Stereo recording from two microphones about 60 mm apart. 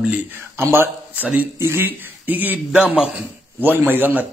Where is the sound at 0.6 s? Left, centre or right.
Right.